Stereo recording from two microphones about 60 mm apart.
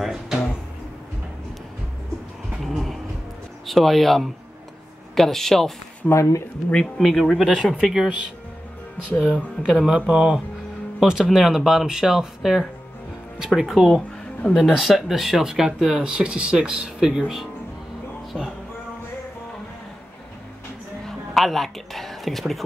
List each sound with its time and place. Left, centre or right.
0.0 s music: centre
2.6 s a sound: centre
3.6 s speech: centre
6.0 s speech: left
6.7 s speech: centre
7.1 s speech: centre
9.2 s speech: centre
21.3 s a woman's voice: centre